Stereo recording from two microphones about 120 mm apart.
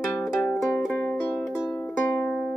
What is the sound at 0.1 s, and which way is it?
Music, 15° left (ahead or behind).